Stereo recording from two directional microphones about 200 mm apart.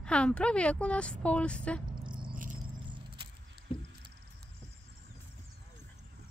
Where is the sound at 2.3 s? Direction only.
40° right (ahead or behind).